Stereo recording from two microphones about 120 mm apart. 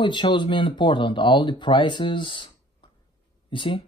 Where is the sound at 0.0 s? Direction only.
40° left (ahead or behind).